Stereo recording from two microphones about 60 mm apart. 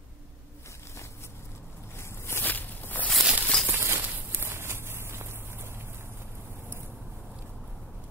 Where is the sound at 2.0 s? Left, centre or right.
Left.